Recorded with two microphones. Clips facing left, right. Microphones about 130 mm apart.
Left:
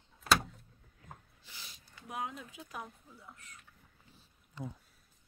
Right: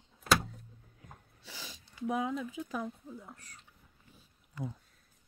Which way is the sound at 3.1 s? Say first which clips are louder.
Right 7 dB; 45° right (ahead or behind).